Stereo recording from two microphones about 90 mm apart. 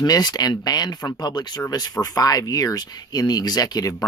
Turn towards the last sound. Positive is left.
turn(degrees=45)  # may be behind; listen again after turning